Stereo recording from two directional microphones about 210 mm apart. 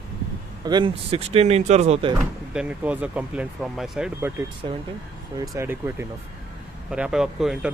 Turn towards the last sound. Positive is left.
turn(degrees=0)  # may be behind; listen again after turning